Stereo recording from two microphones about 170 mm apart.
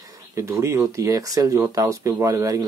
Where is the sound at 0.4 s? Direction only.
15° right (ahead or behind).